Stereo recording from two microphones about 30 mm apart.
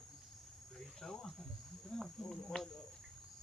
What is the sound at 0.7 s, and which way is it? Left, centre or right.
Speech, centre.